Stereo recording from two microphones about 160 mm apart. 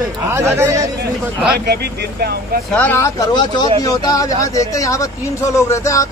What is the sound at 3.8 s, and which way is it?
Speech, 25° left (ahead or behind).